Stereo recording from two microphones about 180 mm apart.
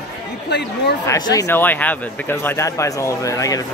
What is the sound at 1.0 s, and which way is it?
A man's voice, 20° left (ahead or behind).